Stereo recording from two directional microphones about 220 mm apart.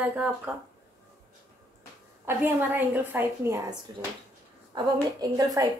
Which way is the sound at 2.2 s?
10° right (ahead or behind).